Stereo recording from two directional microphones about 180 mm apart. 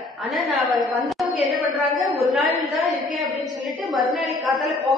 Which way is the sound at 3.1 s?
Centre (ahead or behind).